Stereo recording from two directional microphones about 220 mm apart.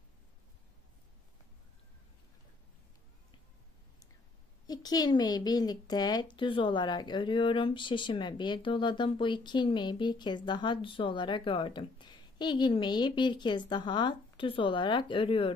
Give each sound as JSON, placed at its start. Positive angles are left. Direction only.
{"t": 4.6, "sound": "speech", "side_deg": 15}